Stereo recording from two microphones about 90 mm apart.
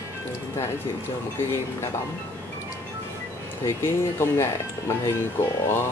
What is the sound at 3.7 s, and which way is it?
Speech, 30° left (ahead or behind).